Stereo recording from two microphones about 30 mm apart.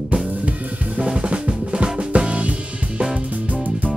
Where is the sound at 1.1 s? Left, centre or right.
Right.